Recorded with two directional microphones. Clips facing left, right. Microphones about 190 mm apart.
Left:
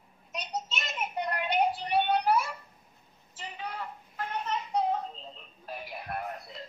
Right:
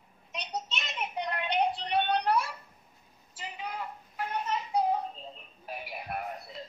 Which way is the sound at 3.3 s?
10° right (ahead or behind).